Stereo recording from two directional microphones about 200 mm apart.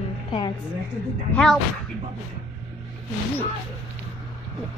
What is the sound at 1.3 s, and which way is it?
Speech, 5° left (ahead or behind).